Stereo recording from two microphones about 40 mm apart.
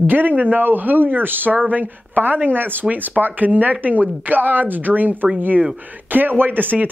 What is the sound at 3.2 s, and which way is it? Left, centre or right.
Speech, right.